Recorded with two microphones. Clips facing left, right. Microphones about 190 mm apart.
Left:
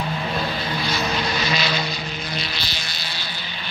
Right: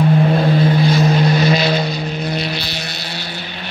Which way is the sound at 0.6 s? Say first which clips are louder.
Right 11 dB; 50° right (ahead or behind).